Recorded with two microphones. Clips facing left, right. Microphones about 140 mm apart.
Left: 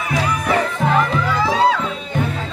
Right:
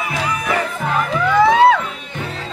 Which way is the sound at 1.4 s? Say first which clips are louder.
Right 6 dB; 60° right (ahead or behind).